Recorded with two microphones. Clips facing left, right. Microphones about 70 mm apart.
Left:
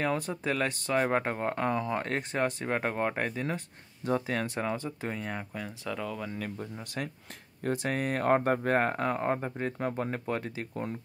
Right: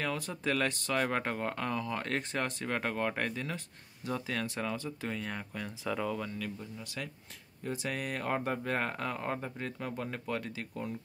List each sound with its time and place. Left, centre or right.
0.0 s speech: left
0.3 s speech: centre
3.4 s speech: left; by 5.7 s centre
5.9 s speech: centre
6.3 s speech: left
7.9 s speech: left